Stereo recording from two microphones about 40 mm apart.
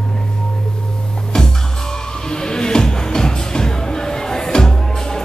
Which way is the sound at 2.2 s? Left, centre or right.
Centre.